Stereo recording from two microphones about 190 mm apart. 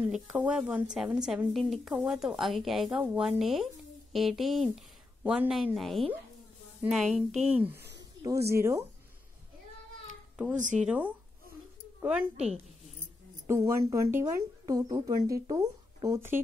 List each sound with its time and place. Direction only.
0.1 s speech: 5° right (ahead or behind)
7.7 s a sound: 60° right (ahead or behind)
8.2 s speech: 15° right (ahead or behind)
10.5 s speech: 40° right (ahead or behind)
10.9 s speech: 10° right (ahead or behind)
13.5 s speech: 15° right (ahead or behind)